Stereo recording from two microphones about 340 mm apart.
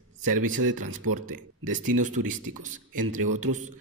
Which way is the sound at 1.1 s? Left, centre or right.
Right.